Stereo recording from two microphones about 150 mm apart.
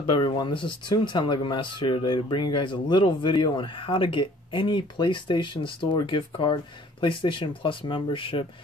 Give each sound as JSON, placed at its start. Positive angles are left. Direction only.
{"t": 0.0, "sound": "speech", "side_deg": 30}